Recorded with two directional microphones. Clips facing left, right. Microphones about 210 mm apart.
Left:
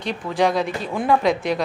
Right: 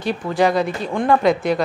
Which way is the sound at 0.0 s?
5° right (ahead or behind).